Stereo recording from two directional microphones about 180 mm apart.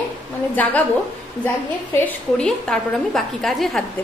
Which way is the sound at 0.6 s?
10° left (ahead or behind).